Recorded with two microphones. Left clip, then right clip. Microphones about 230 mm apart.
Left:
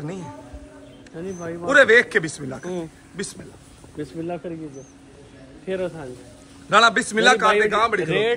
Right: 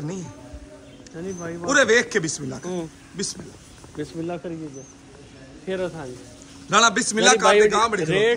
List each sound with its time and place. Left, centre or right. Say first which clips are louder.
1.1 s a man's voice: left 1 dB; centre
8.1 s a man's voice: right 1 dB; right